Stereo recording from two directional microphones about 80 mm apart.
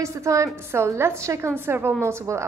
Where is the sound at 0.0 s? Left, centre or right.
Right.